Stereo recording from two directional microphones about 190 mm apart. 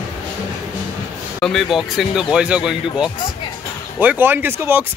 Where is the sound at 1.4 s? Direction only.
Centre (ahead or behind).